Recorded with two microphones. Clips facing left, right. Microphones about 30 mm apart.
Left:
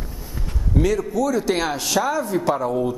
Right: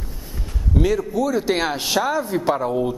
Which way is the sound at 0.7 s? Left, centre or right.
Centre.